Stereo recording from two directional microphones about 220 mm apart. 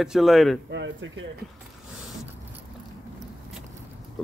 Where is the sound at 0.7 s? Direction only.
55° right (ahead or behind).